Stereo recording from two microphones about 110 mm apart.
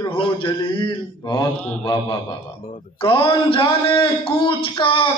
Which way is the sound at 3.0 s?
55° left (ahead or behind).